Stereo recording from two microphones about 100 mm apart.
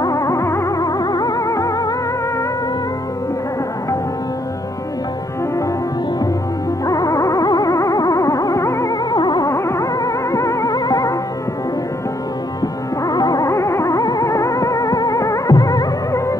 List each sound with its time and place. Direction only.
0.0 s music: 35° left (ahead or behind)
6.9 s music: 35° left (ahead or behind)
9.1 s music: 45° left (ahead or behind)
9.5 s music: 30° left (ahead or behind)
13.0 s music: 40° left (ahead or behind)